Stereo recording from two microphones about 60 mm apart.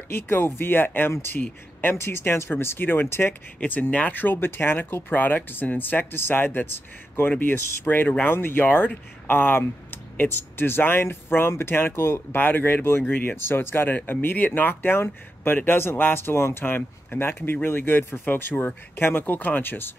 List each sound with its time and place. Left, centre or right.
0.1 s speech: left
3.5 s speech: left